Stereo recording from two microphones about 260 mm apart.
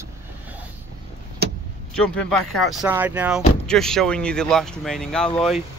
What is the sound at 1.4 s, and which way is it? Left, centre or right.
Vehicle, right.